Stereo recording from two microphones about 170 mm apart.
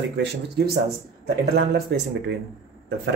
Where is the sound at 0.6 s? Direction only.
75° right (ahead or behind).